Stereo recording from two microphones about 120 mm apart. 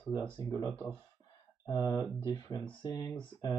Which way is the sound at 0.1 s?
35° left (ahead or behind).